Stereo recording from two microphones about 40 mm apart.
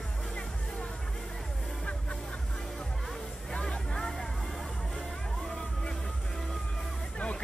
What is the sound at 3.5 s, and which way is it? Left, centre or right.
Music, left.